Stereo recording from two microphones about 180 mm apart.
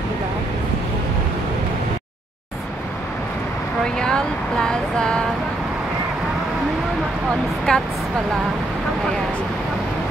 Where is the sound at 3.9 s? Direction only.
5° left (ahead or behind).